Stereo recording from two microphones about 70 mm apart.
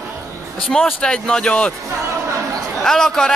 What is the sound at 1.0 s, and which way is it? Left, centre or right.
Speech, centre.